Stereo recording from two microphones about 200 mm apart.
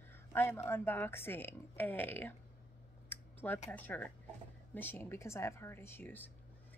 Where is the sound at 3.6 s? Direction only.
10° left (ahead or behind).